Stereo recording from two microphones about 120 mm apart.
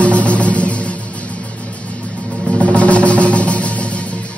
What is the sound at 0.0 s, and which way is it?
Music, 10° left (ahead or behind).